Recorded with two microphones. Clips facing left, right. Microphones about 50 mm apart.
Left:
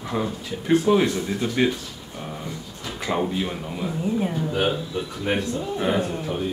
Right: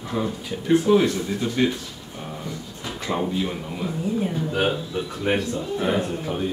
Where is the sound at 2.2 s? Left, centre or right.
Centre.